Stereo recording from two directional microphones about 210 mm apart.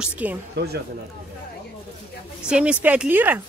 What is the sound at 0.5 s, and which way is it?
Speech, 50° right (ahead or behind).